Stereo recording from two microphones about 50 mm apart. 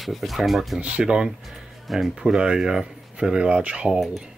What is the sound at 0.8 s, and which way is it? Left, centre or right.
Speech, right.